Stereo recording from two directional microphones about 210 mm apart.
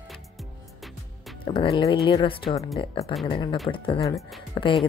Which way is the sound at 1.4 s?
25° left (ahead or behind).